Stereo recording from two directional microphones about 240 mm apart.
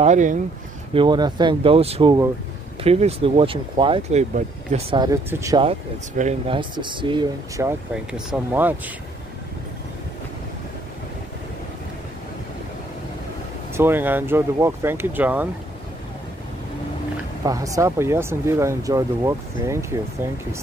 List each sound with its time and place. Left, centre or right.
0.0 s speech: right
0.9 s speech: centre
13.7 s speech: centre
17.5 s speech: centre